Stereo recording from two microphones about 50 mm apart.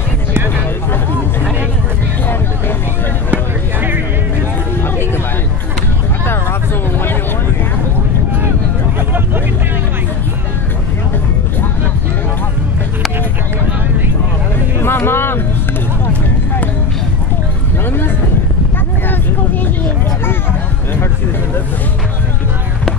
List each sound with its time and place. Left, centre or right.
14.8 s music: left